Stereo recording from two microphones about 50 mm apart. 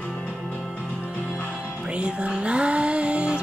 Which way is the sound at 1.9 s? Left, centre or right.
Right.